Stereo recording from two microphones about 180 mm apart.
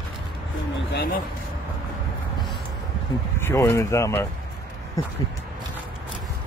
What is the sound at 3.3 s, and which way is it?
Speech, 15° left (ahead or behind).